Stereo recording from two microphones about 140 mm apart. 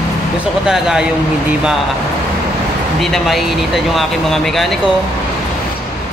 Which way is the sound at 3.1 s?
Centre (ahead or behind).